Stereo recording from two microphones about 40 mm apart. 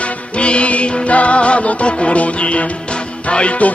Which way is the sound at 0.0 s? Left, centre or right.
Left.